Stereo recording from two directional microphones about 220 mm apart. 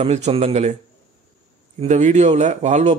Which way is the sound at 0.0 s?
30° right (ahead or behind).